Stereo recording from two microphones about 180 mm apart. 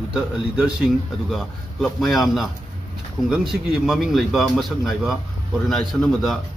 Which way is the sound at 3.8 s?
Centre (ahead or behind).